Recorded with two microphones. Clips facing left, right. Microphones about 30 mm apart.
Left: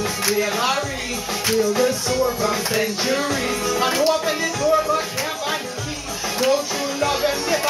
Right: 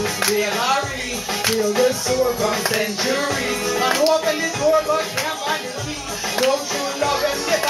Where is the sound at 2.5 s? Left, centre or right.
Centre.